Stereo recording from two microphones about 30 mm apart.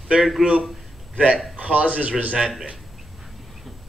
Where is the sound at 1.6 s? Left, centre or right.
Right.